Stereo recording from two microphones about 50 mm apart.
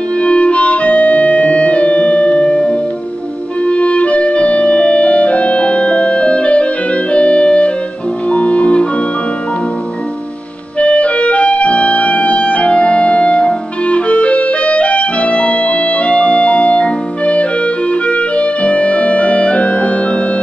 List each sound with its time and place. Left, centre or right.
0.2 s music: left
10.8 s clarinet: left